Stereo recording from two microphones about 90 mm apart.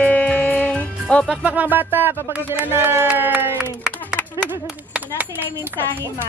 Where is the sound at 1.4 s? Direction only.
15° right (ahead or behind).